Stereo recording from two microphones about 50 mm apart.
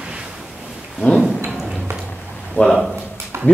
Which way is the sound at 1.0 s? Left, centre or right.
Left.